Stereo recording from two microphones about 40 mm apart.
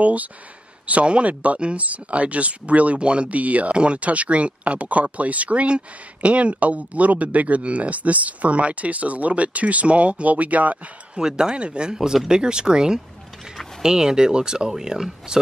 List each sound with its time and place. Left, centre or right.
0.0 s speech: right
11.1 s speech: centre